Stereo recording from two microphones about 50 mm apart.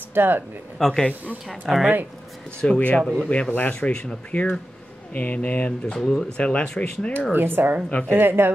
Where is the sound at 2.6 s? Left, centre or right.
Left.